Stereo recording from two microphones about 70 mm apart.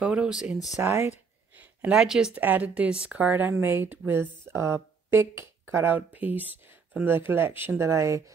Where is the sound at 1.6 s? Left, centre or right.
Centre.